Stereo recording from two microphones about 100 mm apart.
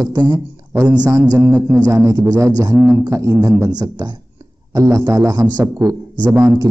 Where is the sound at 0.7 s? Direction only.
35° right (ahead or behind).